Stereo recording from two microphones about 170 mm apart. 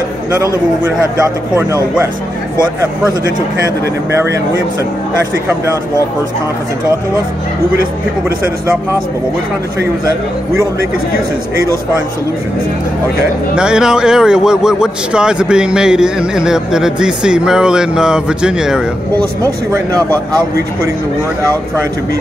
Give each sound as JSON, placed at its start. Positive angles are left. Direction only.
{"t": 13.6, "sound": "a man's voice", "side_deg": -5}